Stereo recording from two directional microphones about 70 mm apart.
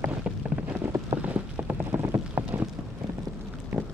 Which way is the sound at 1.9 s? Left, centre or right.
Right.